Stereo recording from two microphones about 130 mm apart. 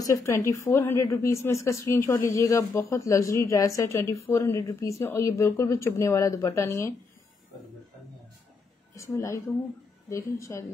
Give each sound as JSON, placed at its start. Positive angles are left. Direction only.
{"t": 0.0, "sound": "a woman's voice", "side_deg": 25}
{"t": 8.9, "sound": "a woman's voice", "side_deg": 25}